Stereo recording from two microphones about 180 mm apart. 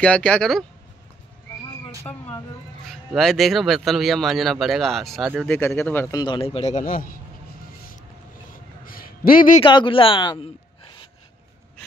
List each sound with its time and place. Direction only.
0.0 s speech: 5° left (ahead or behind)
2.0 s speech: 10° left (ahead or behind)
6.2 s a man's voice: 30° left (ahead or behind); by 7.2 s 50° left (ahead or behind)
8.8 s a sound: 55° left (ahead or behind)
9.6 s speech: 25° left (ahead or behind)